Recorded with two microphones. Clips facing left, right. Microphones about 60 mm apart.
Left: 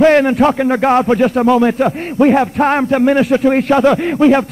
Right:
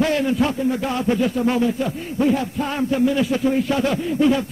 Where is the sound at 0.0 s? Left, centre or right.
Left.